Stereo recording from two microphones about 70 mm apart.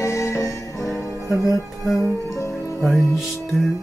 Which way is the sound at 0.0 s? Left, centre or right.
Left.